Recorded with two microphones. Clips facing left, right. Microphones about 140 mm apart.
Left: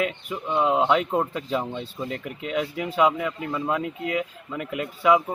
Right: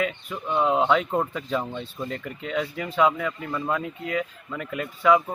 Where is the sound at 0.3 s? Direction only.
10° left (ahead or behind).